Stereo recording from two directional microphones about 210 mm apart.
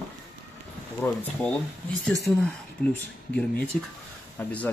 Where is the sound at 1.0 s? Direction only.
5° left (ahead or behind).